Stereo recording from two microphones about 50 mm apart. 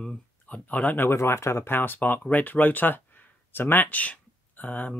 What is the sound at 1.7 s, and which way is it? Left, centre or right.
Speech, left.